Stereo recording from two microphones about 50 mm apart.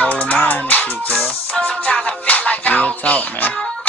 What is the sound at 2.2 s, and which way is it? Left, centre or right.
Music, left.